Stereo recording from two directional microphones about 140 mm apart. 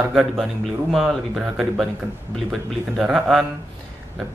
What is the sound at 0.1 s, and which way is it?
Speech, centre (ahead or behind).